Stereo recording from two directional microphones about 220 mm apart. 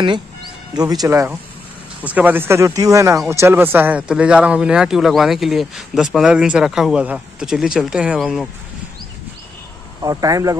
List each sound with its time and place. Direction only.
1.0 s speech: 15° right (ahead or behind)
10.0 s speech: 15° right (ahead or behind)